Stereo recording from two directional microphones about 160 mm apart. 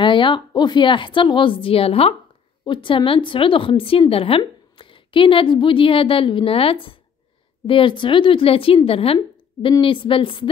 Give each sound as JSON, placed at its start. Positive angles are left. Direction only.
{"t": 0.0, "sound": "a woman's voice", "side_deg": 30}